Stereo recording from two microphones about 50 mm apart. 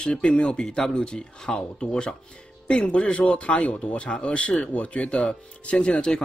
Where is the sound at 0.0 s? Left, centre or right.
Left.